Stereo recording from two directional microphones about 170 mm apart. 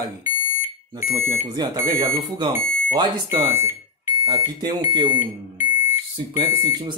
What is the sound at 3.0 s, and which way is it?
Speech, 20° right (ahead or behind).